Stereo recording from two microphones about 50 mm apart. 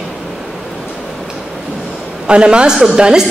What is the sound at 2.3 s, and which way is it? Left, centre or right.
Speech, right.